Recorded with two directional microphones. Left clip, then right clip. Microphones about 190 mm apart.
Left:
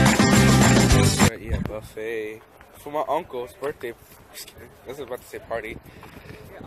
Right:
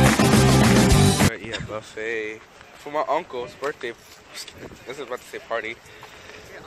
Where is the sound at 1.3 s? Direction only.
10° left (ahead or behind).